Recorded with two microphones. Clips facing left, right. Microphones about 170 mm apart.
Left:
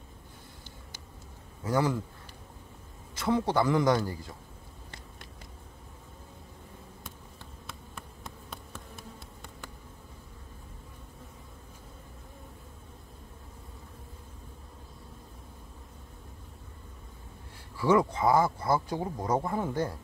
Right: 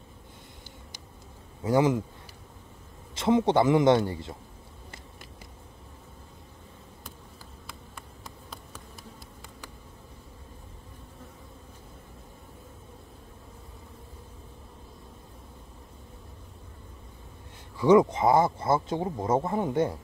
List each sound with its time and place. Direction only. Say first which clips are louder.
1.6 s speech: right 5 dB; 20° right (ahead or behind)
3.2 s speech: right 5 dB; 20° right (ahead or behind)
17.7 s speech: right 5 dB; 20° right (ahead or behind)